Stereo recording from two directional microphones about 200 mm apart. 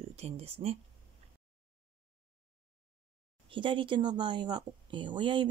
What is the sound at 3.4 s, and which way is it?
Speech, 25° right (ahead or behind).